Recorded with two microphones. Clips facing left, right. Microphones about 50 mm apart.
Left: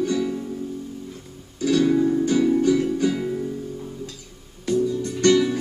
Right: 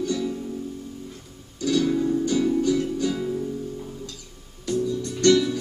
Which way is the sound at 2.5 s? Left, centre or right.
Left.